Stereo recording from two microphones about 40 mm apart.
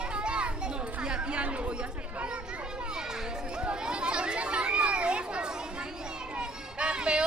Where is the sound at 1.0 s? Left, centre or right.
Right.